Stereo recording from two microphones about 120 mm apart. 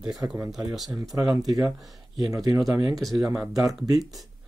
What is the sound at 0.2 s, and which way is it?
Speech, 20° right (ahead or behind).